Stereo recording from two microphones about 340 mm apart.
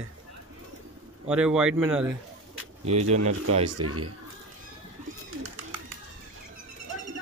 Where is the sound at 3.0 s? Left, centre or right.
Right.